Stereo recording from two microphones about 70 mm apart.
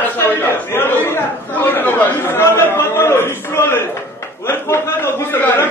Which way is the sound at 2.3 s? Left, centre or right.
Left.